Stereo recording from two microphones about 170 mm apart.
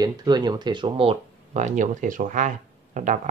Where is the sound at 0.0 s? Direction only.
25° right (ahead or behind).